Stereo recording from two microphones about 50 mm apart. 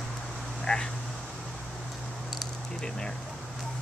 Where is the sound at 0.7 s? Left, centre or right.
Left.